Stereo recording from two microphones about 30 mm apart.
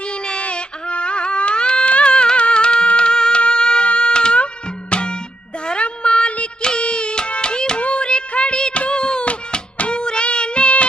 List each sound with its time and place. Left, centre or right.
0.1 s baby cry: left
0.4 s a sound: left
1.9 s music: left
3.8 s a sound: left
4.4 s music: left
5.7 s a sound: left
6.8 s music: left
7.8 s carnatic music: left
9.8 s music: left